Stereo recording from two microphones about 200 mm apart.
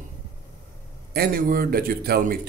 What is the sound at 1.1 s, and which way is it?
A man's voice, 45° right (ahead or behind).